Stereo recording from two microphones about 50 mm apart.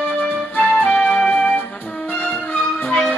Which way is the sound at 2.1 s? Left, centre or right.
Left.